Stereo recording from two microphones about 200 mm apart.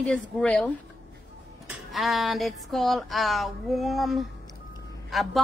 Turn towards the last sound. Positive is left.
turn(degrees=0)  # may be behind; listen again after turning